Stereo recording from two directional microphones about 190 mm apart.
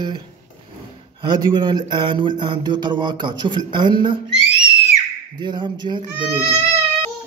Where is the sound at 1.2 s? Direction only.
25° right (ahead or behind).